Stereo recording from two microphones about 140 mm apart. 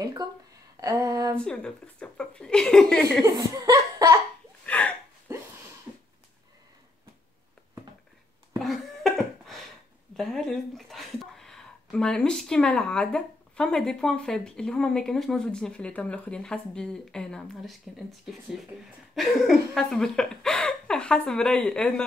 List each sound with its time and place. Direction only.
0.2 s a sound: 30° right (ahead or behind)
1.4 s speech: 5° left (ahead or behind)
3.3 s laughter: 25° right (ahead or behind)
4.6 s a sound: 10° left (ahead or behind)
8.5 s cough: centre (ahead or behind)
10.1 s speech: 5° left (ahead or behind)